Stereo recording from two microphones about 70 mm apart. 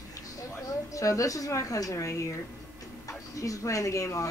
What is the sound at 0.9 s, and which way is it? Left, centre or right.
A man's voice, left.